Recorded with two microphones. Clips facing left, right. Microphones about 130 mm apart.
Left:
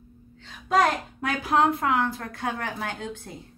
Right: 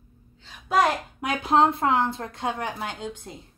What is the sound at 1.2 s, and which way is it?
A woman's voice, 25° right (ahead or behind).